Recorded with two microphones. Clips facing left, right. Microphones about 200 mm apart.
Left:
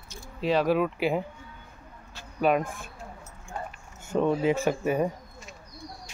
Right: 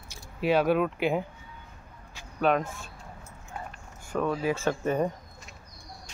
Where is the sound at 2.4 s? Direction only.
5° left (ahead or behind).